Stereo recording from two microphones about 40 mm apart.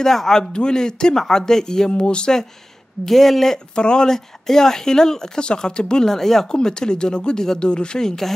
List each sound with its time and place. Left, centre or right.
0.0 s speech: centre
1.9 s speech: left
3.1 s speech: centre; by 8.1 s left